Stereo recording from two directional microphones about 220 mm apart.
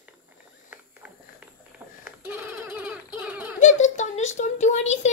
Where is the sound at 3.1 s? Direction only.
5° right (ahead or behind).